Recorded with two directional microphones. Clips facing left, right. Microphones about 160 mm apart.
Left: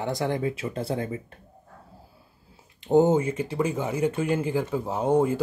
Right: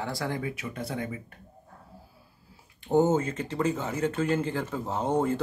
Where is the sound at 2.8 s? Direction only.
20° left (ahead or behind).